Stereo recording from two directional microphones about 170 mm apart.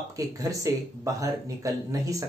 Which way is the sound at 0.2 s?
20° right (ahead or behind).